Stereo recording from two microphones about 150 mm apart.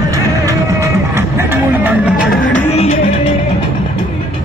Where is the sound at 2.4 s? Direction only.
50° left (ahead or behind).